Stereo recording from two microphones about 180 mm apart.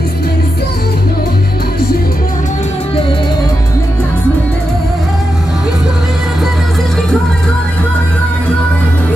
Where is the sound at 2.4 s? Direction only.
30° left (ahead or behind).